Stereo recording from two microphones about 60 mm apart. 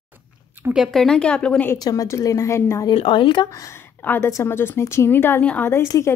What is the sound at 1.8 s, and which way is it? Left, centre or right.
Speech, left.